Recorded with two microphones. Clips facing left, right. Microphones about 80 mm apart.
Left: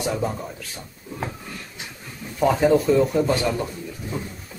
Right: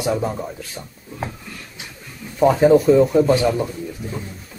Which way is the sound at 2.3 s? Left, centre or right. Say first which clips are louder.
Right 5 dB; centre.